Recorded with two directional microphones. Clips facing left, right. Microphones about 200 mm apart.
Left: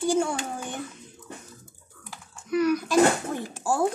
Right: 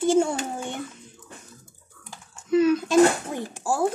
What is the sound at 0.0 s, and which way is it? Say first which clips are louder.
Babbling: right 4 dB; 25° right (ahead or behind).